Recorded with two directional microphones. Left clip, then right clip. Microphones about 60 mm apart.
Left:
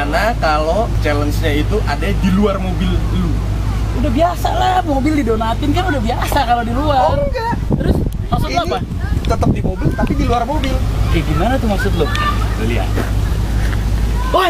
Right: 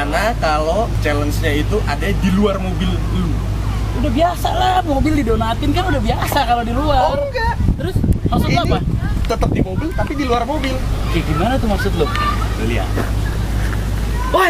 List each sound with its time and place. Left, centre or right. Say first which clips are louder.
0.0 s speech: left 2 dB; centre
4.0 s speech: left 1 dB; centre
7.8 s a sound: left 2 dB; centre
9.9 s speech: even; right
11.1 s speech: left 1 dB; centre
12.6 s speech: left 1 dB; centre
14.3 s speech: even; right